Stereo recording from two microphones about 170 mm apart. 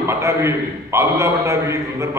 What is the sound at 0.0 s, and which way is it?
A man's voice, 15° right (ahead or behind).